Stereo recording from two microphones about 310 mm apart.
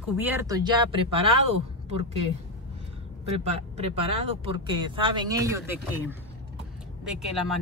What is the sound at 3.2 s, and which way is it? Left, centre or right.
Speech, right.